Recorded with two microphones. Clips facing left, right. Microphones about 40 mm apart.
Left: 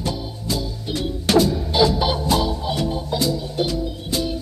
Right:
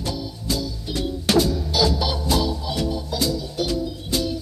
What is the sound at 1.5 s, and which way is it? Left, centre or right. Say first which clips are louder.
Music: left 3 dB; left.